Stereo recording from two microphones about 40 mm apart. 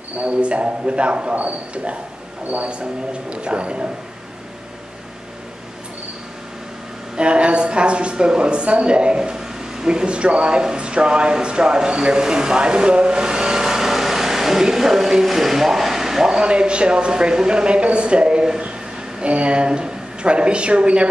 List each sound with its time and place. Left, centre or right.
0.3 s speech: right
2.8 s speech: right
7.2 s a woman's voice: right; by 16.4 s centre
16.4 s speech: right